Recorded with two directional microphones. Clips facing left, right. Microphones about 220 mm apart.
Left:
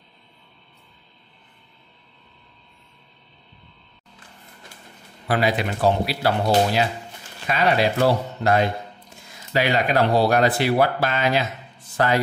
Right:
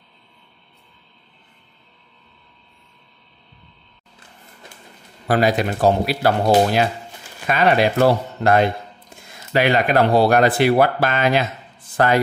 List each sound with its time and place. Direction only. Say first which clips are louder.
5.3 s speech: right 4 dB; 45° right (ahead or behind)